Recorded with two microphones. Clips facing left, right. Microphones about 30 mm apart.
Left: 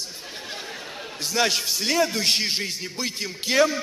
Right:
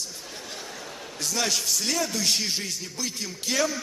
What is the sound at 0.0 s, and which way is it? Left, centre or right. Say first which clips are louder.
A man's voice: left 2 dB; left.